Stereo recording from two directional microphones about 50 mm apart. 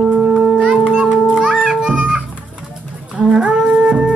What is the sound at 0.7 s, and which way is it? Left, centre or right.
Children playing, centre.